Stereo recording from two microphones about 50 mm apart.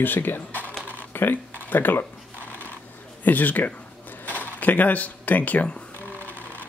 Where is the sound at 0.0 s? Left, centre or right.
Left.